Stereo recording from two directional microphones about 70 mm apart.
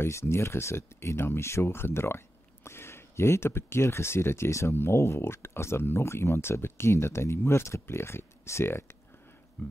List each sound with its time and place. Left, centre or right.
0.0 s speech: left
9.6 s speech: left